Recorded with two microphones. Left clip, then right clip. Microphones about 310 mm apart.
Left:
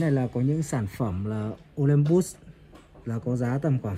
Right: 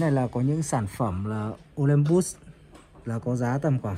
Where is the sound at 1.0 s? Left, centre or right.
Right.